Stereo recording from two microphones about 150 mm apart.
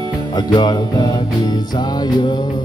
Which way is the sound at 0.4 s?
30° left (ahead or behind).